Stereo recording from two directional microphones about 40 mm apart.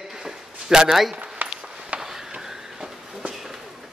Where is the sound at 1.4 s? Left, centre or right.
Right.